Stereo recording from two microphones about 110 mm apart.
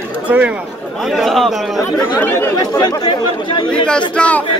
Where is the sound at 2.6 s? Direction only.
35° left (ahead or behind).